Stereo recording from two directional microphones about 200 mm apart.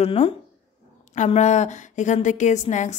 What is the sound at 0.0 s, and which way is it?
A woman's voice, 30° left (ahead or behind).